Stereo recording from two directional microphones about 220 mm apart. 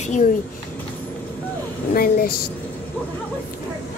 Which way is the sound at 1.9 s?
40° left (ahead or behind).